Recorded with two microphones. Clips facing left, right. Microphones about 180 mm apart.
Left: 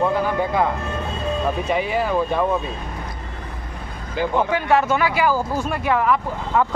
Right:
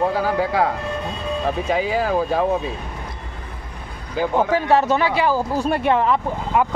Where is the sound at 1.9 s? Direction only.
90° right.